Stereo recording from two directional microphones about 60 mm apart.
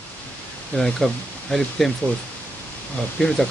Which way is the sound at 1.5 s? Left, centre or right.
Centre.